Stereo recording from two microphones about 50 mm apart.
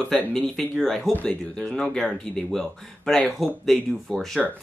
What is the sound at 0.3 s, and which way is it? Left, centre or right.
Speech, centre.